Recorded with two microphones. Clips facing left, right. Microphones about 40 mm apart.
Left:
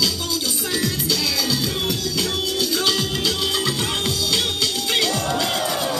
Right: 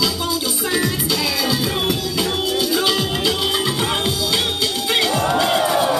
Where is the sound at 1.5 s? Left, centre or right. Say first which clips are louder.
Right 3 dB; centre.